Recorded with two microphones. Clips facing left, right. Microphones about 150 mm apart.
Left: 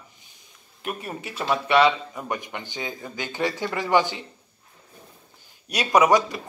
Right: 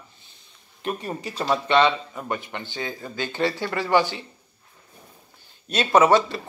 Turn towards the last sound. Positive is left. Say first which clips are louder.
# right 1 dB
turn(degrees=15)  # may be behind; listen again after turning